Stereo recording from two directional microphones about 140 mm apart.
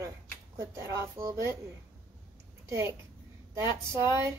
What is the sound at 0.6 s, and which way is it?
A woman's voice, 20° right (ahead or behind).